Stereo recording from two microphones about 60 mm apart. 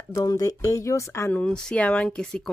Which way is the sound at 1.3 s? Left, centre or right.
Centre.